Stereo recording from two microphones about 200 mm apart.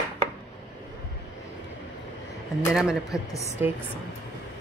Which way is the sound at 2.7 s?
5° right (ahead or behind).